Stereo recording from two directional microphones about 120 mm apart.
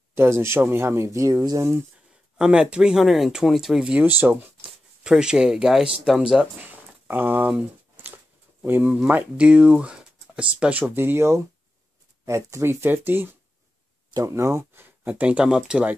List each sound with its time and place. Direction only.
0.1 s speech: 20° right (ahead or behind)
2.3 s speech: 5° right (ahead or behind)
6.7 s a sound: 15° right (ahead or behind)
8.6 s speech: 15° right (ahead or behind)